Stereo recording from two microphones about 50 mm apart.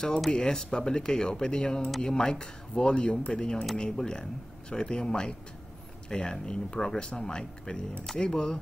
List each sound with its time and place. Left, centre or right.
0.3 s speech: centre